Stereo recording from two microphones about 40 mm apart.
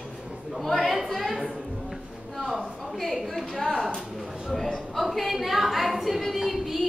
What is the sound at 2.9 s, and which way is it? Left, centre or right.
A woman's voice, centre.